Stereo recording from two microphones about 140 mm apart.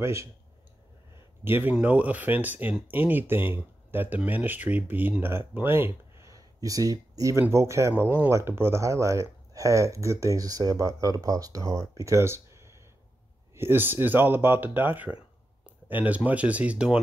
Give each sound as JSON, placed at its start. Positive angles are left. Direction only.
{"t": 0.0, "sound": "speech", "side_deg": -20}
{"t": 1.4, "sound": "speech", "side_deg": -15}